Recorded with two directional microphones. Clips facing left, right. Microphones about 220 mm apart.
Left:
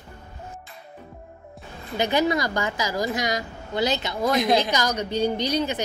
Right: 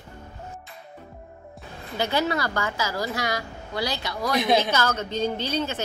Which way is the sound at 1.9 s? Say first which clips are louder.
Left 3 dB; 15° left (ahead or behind).